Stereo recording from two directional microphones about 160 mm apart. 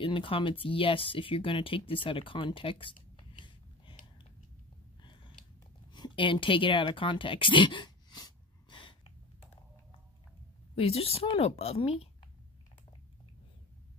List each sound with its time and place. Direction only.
0.0 s speech: 30° left (ahead or behind)
5.0 s a sound: 30° left (ahead or behind)
10.8 s a woman's voice: 40° left (ahead or behind)